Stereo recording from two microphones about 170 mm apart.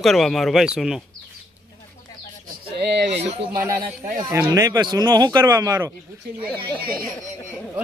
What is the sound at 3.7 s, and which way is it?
Speech, 50° right (ahead or behind).